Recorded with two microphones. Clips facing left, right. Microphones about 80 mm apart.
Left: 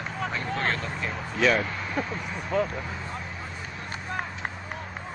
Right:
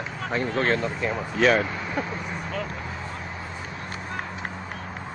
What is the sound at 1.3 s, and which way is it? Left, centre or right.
Speech, right.